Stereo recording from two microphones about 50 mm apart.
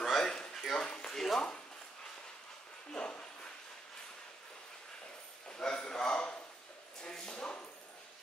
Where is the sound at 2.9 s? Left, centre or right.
Centre.